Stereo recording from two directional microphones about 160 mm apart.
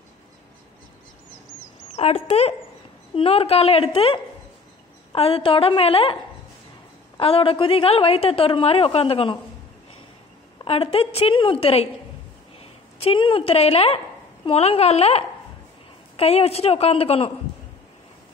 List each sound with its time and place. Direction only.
2.0 s a woman's voice: 40° left (ahead or behind)
7.2 s a woman's voice: 35° left (ahead or behind)
10.6 s a woman's voice: 35° left (ahead or behind)